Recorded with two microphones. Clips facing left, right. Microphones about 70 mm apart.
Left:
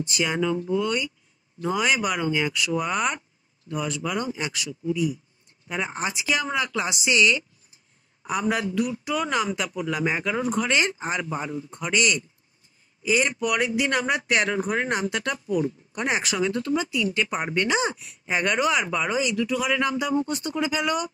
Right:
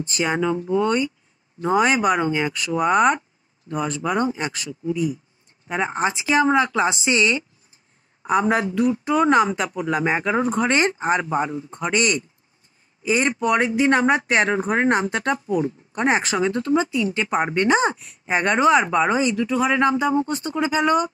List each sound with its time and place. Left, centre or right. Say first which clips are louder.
0.0 s speech: right 3 dB; right